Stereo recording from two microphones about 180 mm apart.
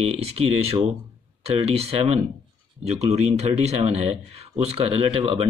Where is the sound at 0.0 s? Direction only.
35° right (ahead or behind).